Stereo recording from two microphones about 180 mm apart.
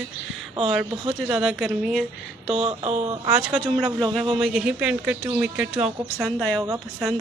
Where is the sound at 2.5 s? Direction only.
35° right (ahead or behind).